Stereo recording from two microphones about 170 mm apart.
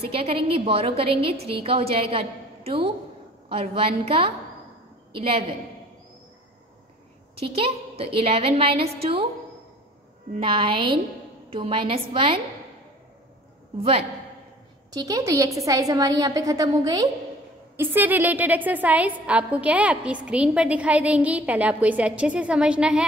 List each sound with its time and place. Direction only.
0.0 s a woman's voice: 35° right (ahead or behind)
7.3 s a woman's voice: 35° right (ahead or behind)
10.4 s a woman's voice: 30° right (ahead or behind)
13.7 s a woman's voice: 35° right (ahead or behind)
14.9 s a woman's voice: 20° right (ahead or behind)
17.7 s a woman's voice: 10° right (ahead or behind)